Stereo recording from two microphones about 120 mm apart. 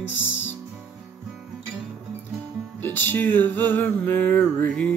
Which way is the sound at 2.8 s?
15° left (ahead or behind).